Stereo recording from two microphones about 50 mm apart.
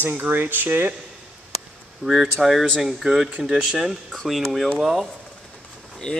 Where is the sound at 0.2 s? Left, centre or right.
Right.